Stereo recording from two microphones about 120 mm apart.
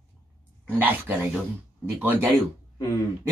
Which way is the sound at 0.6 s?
15° right (ahead or behind).